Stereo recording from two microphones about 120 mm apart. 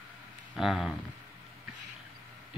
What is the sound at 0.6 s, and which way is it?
Speech, 5° right (ahead or behind).